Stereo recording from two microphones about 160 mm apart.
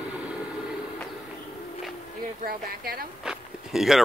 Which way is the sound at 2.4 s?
70° right (ahead or behind).